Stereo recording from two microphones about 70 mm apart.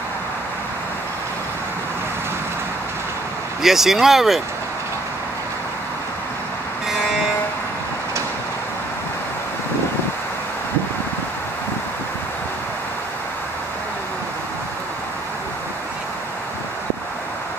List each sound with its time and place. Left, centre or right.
3.6 s speech: centre